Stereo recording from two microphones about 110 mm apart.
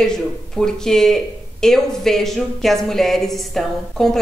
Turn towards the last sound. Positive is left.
turn(degrees=5)  # may be behind; listen again after turning